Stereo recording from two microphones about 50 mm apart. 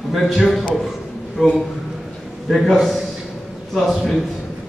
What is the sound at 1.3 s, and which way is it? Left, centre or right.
Speech, centre.